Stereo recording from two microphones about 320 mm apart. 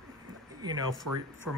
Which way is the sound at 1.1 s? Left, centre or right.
Right.